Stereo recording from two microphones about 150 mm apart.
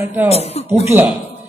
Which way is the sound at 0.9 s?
10° right (ahead or behind).